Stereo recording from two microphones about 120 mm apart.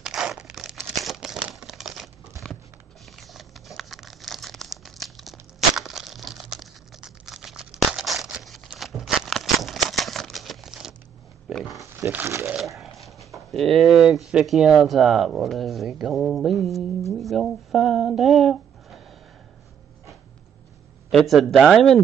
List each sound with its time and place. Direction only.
0.0 s crumpling: 5° right (ahead or behind)
2.4 s a sound: centre (ahead or behind)
3.2 s crumpling: centre (ahead or behind)
11.4 s pig: centre (ahead or behind)
11.8 s wild animals: 25° right (ahead or behind)
12.1 s speech: 15° right (ahead or behind)
12.5 s a sound: centre (ahead or behind)
13.3 s speech: centre (ahead or behind)
17.1 s a sound: centre (ahead or behind)
21.1 s speech: centre (ahead or behind)